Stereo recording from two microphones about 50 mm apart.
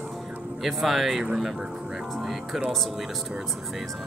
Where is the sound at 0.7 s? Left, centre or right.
Centre.